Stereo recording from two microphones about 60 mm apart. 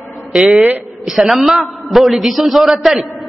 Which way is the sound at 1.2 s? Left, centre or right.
Centre.